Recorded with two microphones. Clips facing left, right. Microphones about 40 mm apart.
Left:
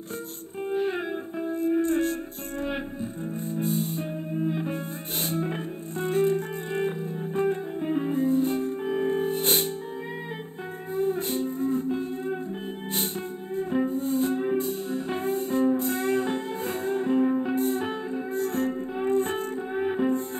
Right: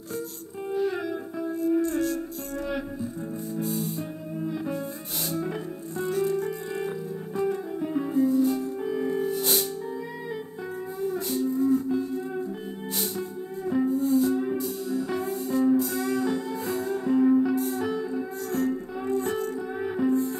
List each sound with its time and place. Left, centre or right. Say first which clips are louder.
0.6 s music: even; left
11.0 s music: left 2 dB; left
13.6 s music: right 2 dB; left